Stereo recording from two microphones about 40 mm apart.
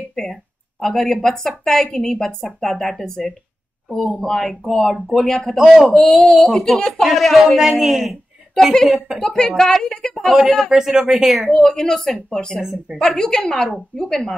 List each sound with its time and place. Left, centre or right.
0.1 s a sound: centre
1.6 s speech: centre
5.6 s speech: centre
5.9 s a man's voice: centre
9.2 s speech: centre
10.3 s a man's voice: centre
11.4 s speech: centre
12.5 s speech: centre
13.0 s speech: centre